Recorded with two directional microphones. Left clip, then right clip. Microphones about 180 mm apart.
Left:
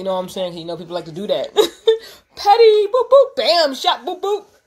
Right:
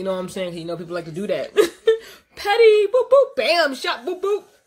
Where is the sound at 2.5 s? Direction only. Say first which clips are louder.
Left 2 dB; 15° right (ahead or behind).